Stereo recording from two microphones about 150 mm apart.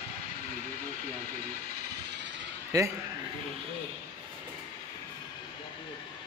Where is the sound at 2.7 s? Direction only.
20° right (ahead or behind).